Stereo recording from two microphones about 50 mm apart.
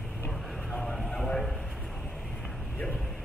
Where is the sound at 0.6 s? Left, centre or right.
Centre.